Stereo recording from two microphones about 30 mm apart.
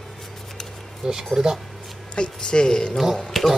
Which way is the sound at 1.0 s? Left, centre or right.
Right.